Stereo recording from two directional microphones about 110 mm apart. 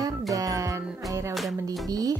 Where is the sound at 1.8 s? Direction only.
35° right (ahead or behind).